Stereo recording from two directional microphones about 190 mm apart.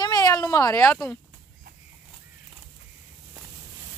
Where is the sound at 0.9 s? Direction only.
5° left (ahead or behind).